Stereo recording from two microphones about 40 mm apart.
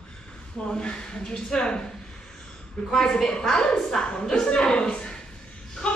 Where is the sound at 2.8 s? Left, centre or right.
Centre.